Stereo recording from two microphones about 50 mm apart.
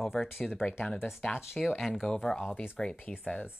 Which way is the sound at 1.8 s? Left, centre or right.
Centre.